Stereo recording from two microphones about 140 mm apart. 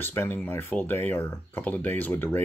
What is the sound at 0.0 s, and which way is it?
Speech, 15° left (ahead or behind).